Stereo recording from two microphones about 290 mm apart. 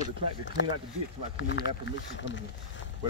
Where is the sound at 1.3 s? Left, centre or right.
Left.